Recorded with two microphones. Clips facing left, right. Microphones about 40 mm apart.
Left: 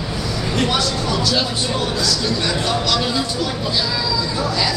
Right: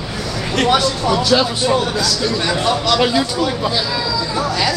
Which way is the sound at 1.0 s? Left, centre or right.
Right.